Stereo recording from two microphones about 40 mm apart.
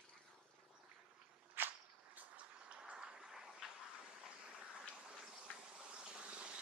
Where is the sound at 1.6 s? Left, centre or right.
Right.